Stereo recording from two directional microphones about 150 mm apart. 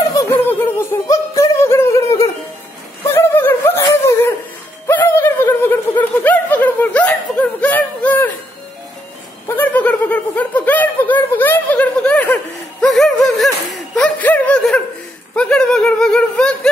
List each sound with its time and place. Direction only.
0.5 s music: 15° left (ahead or behind)
3.0 s a sound: 15° left (ahead or behind)
4.8 s snicker: 15° left (ahead or behind)
9.6 s snicker: 10° left (ahead or behind)
12.8 s a sound: centre (ahead or behind)
15.3 s snicker: 5° left (ahead or behind)